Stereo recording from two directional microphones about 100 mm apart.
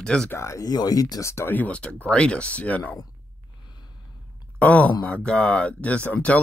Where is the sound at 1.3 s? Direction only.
25° left (ahead or behind).